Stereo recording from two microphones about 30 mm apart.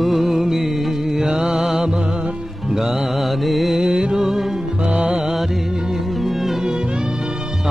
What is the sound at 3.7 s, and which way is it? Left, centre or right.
Music, right.